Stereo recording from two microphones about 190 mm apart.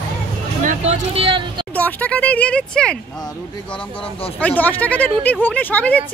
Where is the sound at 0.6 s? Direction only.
35° right (ahead or behind).